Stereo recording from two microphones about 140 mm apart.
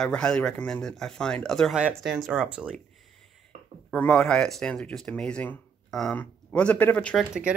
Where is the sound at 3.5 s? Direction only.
65° right (ahead or behind).